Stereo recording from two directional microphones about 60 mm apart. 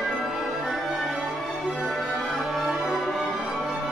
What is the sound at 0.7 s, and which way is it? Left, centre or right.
Music, centre.